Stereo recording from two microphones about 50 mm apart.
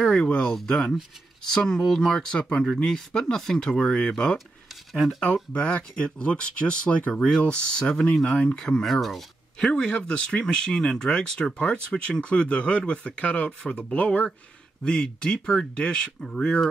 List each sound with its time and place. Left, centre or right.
0.0 s speech: centre
7.2 s speech: centre
8.8 s speech: centre
9.7 s speech: centre